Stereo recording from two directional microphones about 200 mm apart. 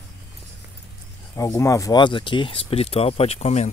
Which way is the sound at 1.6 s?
15° left (ahead or behind).